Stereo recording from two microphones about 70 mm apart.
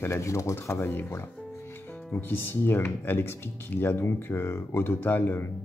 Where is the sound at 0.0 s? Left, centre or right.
Left.